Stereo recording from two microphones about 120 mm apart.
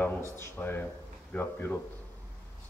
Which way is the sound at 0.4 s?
15° left (ahead or behind).